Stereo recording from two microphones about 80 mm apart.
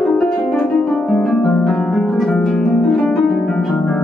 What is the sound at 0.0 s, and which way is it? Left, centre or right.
Harp, centre.